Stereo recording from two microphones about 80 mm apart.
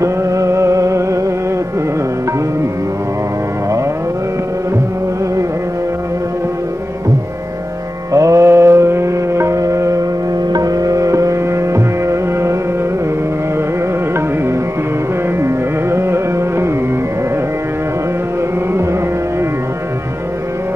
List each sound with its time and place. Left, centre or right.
0.0 s music: right
8.1 s mantra: right
10.5 s music: right
15.9 s carnatic music: right